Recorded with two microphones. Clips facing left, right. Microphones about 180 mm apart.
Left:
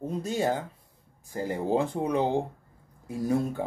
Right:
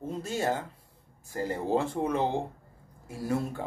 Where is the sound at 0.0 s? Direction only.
15° left (ahead or behind).